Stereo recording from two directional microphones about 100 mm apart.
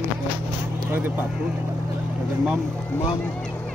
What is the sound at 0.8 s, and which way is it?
Speech, 20° right (ahead or behind).